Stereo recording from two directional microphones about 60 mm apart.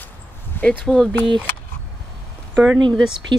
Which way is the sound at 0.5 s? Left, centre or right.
Left.